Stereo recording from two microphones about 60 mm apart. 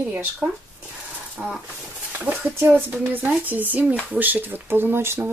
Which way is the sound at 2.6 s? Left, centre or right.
Right.